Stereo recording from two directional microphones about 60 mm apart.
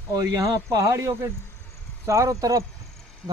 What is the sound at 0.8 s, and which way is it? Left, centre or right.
Speech, right.